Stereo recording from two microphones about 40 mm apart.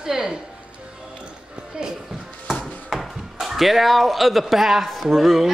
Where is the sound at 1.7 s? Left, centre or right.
Centre.